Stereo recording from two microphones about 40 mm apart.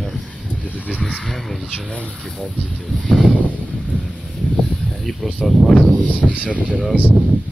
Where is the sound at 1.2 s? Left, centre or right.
Centre.